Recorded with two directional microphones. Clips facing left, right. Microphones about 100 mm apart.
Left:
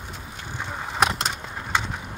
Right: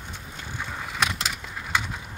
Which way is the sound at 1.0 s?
40° left (ahead or behind).